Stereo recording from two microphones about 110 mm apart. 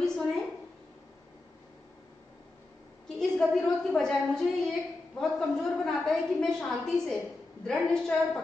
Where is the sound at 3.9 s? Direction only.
5° left (ahead or behind).